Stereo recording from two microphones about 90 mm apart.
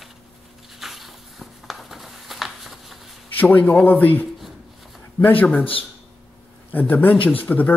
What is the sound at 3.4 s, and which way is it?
Speech, 20° left (ahead or behind).